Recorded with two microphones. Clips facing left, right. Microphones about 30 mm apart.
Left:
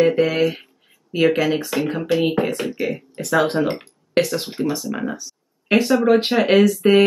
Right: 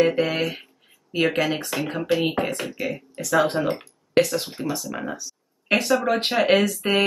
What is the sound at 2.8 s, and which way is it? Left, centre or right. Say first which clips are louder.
Speech: left 4 dB; left.